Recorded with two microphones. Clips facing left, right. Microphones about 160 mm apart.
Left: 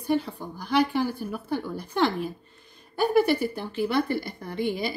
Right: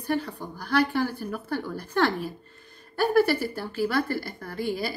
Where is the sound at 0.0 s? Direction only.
15° left (ahead or behind).